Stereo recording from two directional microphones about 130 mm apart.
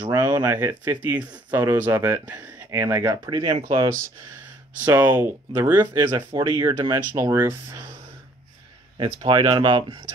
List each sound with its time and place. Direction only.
0.0 s speech: 25° right (ahead or behind)
3.3 s speech: 35° right (ahead or behind)
4.8 s speech: 15° right (ahead or behind)
6.3 s speech: 35° right (ahead or behind)
6.6 s speech: 25° right (ahead or behind)
8.9 s speech: 35° right (ahead or behind)